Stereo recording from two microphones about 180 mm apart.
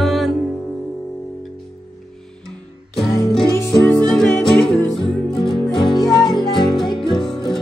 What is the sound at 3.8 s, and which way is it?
Music, 5° left (ahead or behind).